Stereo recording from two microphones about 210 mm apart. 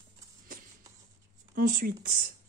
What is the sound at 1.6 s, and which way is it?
Speech, 45° right (ahead or behind).